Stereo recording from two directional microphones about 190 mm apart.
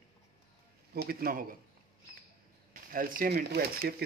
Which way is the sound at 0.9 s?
55° right (ahead or behind).